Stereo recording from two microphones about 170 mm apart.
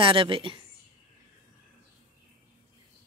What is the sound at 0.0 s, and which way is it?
Speech, 30° right (ahead or behind).